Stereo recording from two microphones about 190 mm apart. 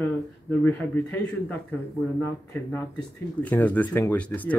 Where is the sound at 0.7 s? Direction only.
10° left (ahead or behind).